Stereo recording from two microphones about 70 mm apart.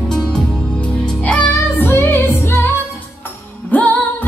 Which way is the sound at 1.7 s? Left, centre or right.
Left.